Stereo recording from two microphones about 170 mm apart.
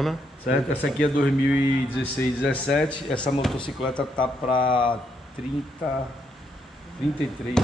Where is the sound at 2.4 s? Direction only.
5° left (ahead or behind).